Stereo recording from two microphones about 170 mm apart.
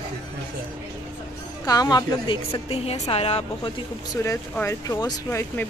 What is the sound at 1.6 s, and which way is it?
A woman's voice, 20° left (ahead or behind).